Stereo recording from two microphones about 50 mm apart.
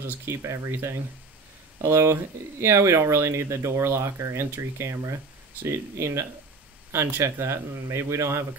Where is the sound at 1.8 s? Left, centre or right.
Right.